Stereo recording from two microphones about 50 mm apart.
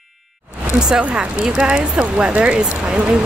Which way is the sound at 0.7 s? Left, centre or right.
Centre.